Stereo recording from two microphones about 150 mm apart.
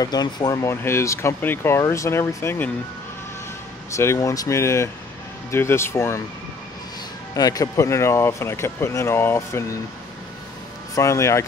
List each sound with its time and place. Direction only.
0.0 s speech: 25° left (ahead or behind)
3.9 s speech: 20° left (ahead or behind)
7.3 s speech: 25° left (ahead or behind)
11.0 s speech: 20° left (ahead or behind)